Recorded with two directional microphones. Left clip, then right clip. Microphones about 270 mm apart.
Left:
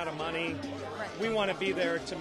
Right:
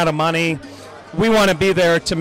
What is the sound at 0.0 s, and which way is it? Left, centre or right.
A man's voice, right.